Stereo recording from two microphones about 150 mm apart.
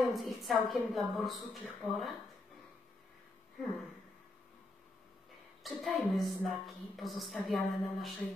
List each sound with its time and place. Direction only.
0.0 s a woman's voice: centre (ahead or behind)
5.6 s a woman's voice: centre (ahead or behind)